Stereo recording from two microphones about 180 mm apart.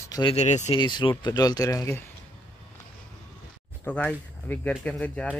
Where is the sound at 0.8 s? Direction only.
25° left (ahead or behind).